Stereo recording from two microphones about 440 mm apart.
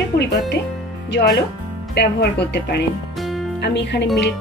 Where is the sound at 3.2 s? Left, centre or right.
Centre.